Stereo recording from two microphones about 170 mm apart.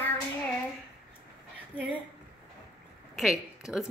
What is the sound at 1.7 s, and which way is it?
Speech, 10° right (ahead or behind).